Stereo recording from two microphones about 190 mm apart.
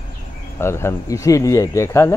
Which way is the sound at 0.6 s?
15° left (ahead or behind).